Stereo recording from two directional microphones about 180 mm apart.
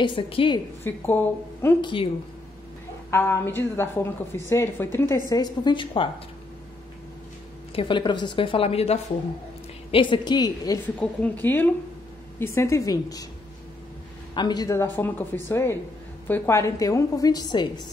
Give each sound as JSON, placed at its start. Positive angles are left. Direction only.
{"t": 0.0, "sound": "a woman's voice", "side_deg": 30}
{"t": 0.8, "sound": "a woman's voice", "side_deg": 10}
{"t": 1.8, "sound": "a woman's voice", "side_deg": 25}
{"t": 3.1, "sound": "a woman's voice", "side_deg": 15}
{"t": 7.7, "sound": "a woman's voice", "side_deg": 30}
{"t": 11.0, "sound": "a woman's voice", "side_deg": 10}
{"t": 14.3, "sound": "a woman's voice", "side_deg": 25}